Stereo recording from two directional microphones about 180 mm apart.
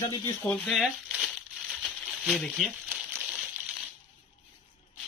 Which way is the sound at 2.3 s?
Centre (ahead or behind).